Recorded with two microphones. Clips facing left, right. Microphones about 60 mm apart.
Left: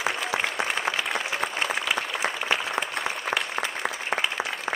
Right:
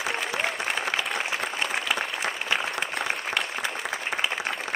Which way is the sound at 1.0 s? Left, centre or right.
Centre.